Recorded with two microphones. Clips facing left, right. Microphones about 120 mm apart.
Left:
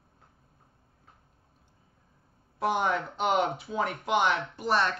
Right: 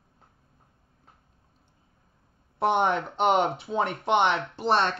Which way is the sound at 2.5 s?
25° right (ahead or behind).